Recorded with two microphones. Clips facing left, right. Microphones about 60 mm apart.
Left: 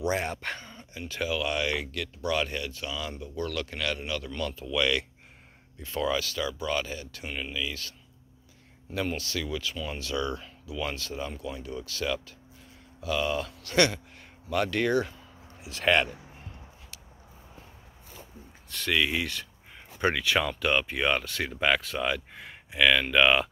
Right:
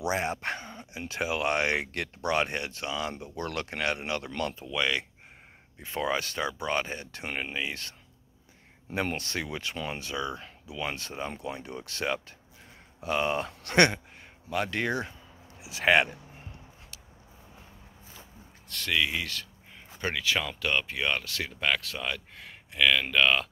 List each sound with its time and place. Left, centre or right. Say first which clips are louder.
0.0 s speech: even; centre
0.9 s speech: even; right
1.4 s speech: right 2 dB; right
4.6 s speech: left 4 dB; centre
5.9 s speech: left 1 dB; right
8.9 s speech: even; right
10.1 s speech: left 4 dB; centre
11.0 s speech: left 1 dB; right
14.5 s speech: left 4 dB; centre
18.7 s speech: left 2 dB; centre